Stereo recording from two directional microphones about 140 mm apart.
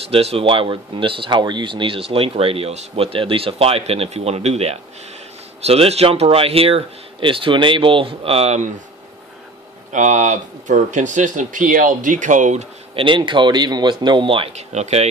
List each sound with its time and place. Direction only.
0.1 s speech: 45° right (ahead or behind)
9.9 s speech: 60° right (ahead or behind)
12.9 s speech: 35° right (ahead or behind)